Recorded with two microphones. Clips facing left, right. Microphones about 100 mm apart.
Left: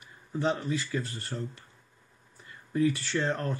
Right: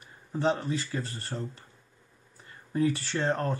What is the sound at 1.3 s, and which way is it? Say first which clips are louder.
Speech: even; 20° right (ahead or behind).